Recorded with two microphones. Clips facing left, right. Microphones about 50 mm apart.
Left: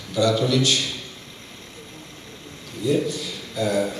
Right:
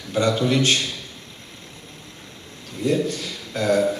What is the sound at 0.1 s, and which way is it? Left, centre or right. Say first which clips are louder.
Speech: even; right.